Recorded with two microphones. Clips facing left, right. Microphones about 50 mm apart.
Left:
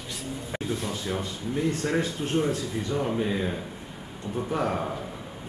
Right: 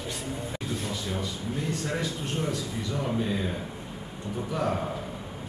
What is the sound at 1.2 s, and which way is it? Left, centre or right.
Speech, left.